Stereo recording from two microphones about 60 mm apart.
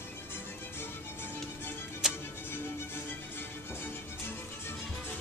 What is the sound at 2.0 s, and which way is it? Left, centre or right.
Music, centre.